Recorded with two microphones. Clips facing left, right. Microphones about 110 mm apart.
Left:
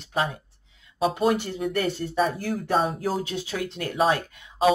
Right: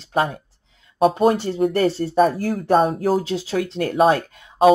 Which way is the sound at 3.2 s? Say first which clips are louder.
Right 7 dB; 30° right (ahead or behind).